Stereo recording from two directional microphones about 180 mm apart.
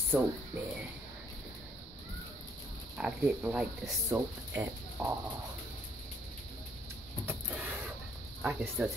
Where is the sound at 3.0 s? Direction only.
5° right (ahead or behind).